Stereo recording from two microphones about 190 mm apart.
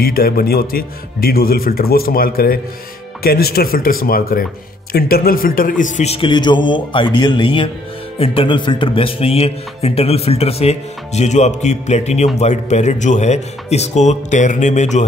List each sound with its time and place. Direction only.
0.0 s a man's voice: 50° left (ahead or behind)